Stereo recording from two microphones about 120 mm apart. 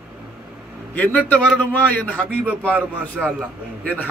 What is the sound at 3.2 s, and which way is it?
Speech, 5° right (ahead or behind).